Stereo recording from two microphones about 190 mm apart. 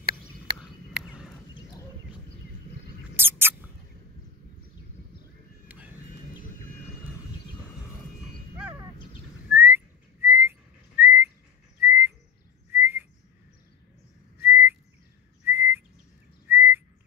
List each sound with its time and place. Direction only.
0.0 s a sound: 60° right (ahead or behind)
3.2 s mouse: 10° right (ahead or behind)
5.7 s music: 10° right (ahead or behind)
9.5 s whistling: 10° right (ahead or behind)
14.4 s whistling: 10° right (ahead or behind)